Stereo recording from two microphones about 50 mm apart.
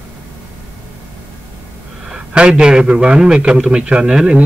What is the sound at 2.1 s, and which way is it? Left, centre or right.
A man's voice, centre.